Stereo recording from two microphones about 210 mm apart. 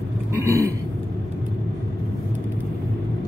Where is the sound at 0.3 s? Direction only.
15° right (ahead or behind).